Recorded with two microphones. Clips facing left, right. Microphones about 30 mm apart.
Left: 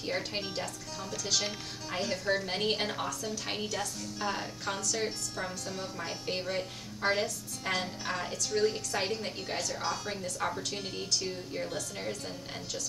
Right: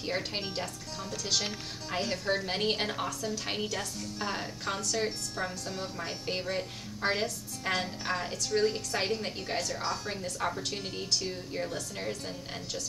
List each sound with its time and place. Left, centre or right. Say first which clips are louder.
0.0 s a woman's voice: right 1 dB; centre